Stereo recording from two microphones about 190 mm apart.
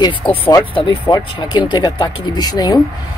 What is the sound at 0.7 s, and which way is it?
Speech, 25° left (ahead or behind).